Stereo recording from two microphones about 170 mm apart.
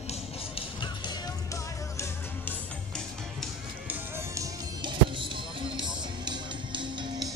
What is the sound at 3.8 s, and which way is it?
Music, 15° right (ahead or behind).